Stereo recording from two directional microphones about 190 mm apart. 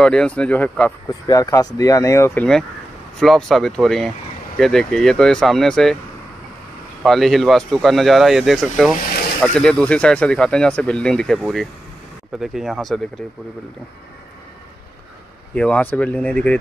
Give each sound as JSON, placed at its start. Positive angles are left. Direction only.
{"t": 0.0, "sound": "speech", "side_deg": 5}
{"t": 1.2, "sound": "speech", "side_deg": 20}
{"t": 3.2, "sound": "speech", "side_deg": 0}
{"t": 7.0, "sound": "speech", "side_deg": 0}
{"t": 15.5, "sound": "speech", "side_deg": 5}